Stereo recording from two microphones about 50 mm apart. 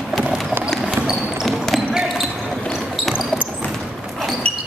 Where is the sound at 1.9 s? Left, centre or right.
Centre.